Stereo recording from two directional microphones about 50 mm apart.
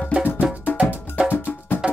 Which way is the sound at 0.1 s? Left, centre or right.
Right.